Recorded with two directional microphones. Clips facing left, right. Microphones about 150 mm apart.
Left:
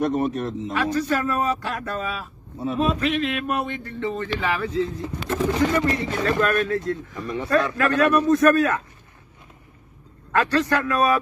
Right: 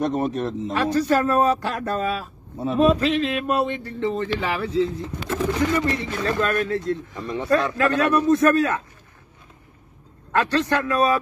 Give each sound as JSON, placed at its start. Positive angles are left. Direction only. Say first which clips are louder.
{"t": 0.0, "sound": "speech", "louder": "even", "side_deg": -30}
{"t": 5.5, "sound": "speech", "louder": "left 1 dB", "side_deg": 20}
{"t": 6.2, "sound": "speech", "louder": "left 1 dB", "side_deg": -25}
{"t": 10.3, "sound": "speech", "louder": "even", "side_deg": -25}